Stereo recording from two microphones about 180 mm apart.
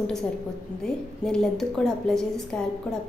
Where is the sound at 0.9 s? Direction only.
Centre (ahead or behind).